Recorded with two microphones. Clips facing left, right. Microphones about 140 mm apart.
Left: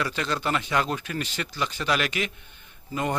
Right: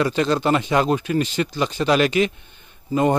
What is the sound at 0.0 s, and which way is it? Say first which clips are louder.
Speech: right 9 dB; 25° right (ahead or behind).